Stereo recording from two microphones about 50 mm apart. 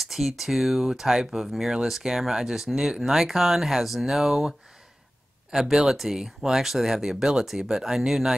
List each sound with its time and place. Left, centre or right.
0.0 s speech: centre